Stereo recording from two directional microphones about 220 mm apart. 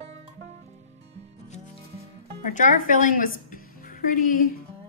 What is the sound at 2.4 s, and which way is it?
A woman's voice, 35° left (ahead or behind).